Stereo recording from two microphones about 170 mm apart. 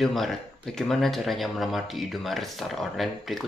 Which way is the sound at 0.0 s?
Centre (ahead or behind).